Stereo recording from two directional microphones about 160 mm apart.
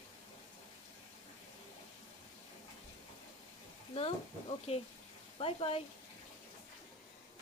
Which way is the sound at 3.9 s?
35° left (ahead or behind).